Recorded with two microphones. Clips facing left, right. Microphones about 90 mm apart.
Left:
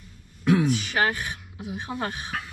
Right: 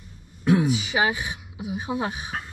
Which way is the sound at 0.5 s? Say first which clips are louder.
Right 1 dB; 5° right (ahead or behind).